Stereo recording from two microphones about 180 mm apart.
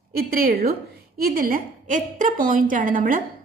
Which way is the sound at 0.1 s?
55° right (ahead or behind).